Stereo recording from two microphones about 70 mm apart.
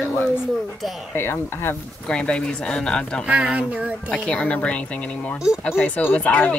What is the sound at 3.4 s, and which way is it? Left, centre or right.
Speech, centre.